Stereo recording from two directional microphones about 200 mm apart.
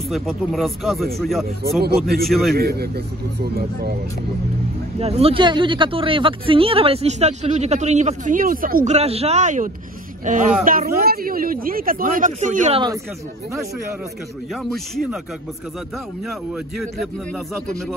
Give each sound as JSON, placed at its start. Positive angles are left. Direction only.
{"t": 0.1, "sound": "speech", "side_deg": 0}
{"t": 1.8, "sound": "speech", "side_deg": -50}
{"t": 2.2, "sound": "speech", "side_deg": 0}
{"t": 2.5, "sound": "speech", "side_deg": -50}
{"t": 4.9, "sound": "speech", "side_deg": -30}
{"t": 14.5, "sound": "speech", "side_deg": 0}